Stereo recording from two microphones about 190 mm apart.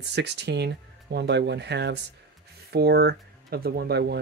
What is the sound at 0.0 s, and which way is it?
Speech, 65° right (ahead or behind).